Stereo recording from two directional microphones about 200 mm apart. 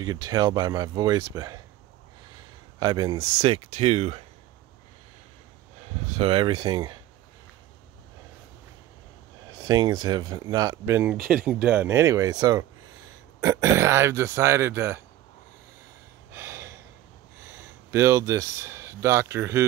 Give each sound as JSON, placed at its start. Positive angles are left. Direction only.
{"t": 0.0, "sound": "speech", "side_deg": -20}
{"t": 2.8, "sound": "speech", "side_deg": -20}
{"t": 3.3, "sound": "speech", "side_deg": -30}
{"t": 6.1, "sound": "speech", "side_deg": -25}
{"t": 9.6, "sound": "speech", "side_deg": -20}
{"t": 11.1, "sound": "speech", "side_deg": -45}
{"t": 11.4, "sound": "speech", "side_deg": -10}
{"t": 16.3, "sound": "gasp", "side_deg": -10}
{"t": 17.4, "sound": "speech", "side_deg": -15}